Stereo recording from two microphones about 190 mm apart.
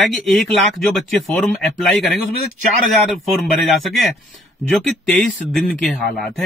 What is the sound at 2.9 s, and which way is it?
Speech, centre (ahead or behind).